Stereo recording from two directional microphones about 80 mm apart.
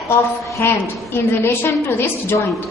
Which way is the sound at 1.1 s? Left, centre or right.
Left.